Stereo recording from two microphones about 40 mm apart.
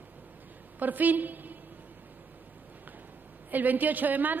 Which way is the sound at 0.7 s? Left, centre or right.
Right.